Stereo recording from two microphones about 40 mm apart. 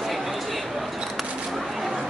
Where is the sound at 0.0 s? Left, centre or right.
Centre.